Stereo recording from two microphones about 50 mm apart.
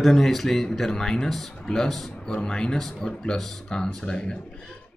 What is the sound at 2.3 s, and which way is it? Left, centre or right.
Speech, centre.